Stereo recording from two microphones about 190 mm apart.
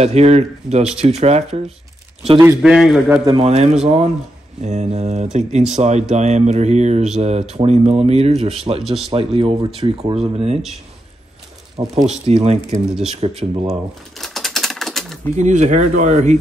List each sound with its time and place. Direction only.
0.0 s speech: 35° right (ahead or behind)
2.4 s a man's voice: 5° right (ahead or behind)
3.3 s speech: 30° right (ahead or behind)
11.9 s speech: 35° right (ahead or behind)
13.7 s typewriter: centre (ahead or behind)
15.3 s speech: 40° right (ahead or behind)